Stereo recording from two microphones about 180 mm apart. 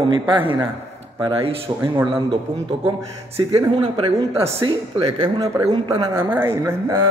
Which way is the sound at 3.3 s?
15° right (ahead or behind).